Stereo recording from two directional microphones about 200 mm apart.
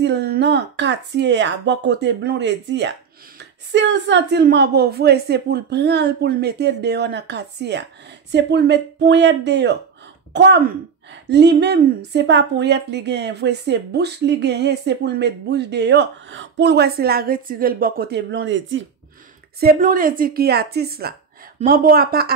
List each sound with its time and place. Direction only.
0.0 s speech: 55° right (ahead or behind)
19.6 s a woman's voice: 45° right (ahead or behind)